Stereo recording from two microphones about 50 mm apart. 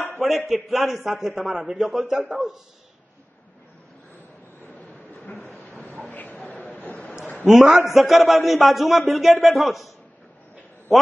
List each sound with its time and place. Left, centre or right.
0.5 s a man's voice: centre
4.7 s a sound: left
7.5 s a man's voice: centre
10.9 s a man's voice: centre